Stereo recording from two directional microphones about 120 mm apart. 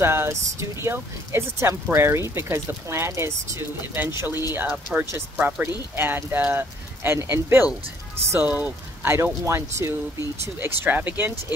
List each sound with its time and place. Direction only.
0.0 s speech: 20° right (ahead or behind)